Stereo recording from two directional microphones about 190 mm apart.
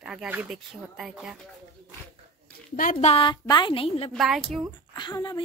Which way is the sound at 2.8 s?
40° left (ahead or behind).